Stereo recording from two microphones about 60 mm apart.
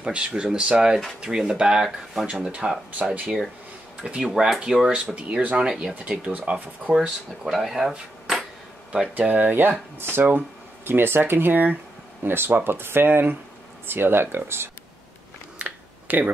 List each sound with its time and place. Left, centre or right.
0.0 s speech: centre
6.0 s speech: right
6.9 s speech: centre
9.2 s speech: right
15.6 s computer keyboard: right